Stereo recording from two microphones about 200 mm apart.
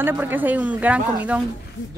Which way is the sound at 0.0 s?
10° right (ahead or behind).